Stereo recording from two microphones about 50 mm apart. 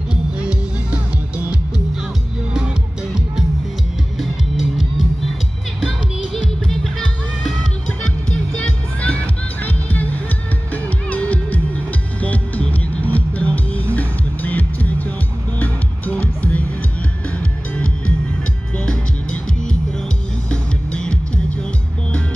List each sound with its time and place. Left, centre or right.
0.1 s music: right
4.2 s music: centre
6.3 s music: centre
8.5 s music: left
18.9 s music: centre